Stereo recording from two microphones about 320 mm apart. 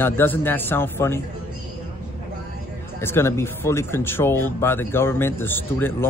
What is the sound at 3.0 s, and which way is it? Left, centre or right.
Speech, centre.